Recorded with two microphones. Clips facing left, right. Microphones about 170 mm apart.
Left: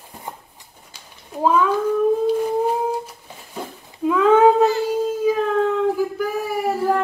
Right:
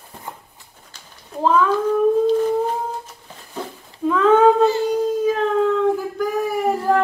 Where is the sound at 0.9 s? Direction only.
10° left (ahead or behind).